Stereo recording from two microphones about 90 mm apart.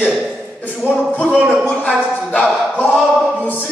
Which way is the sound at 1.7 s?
20° left (ahead or behind).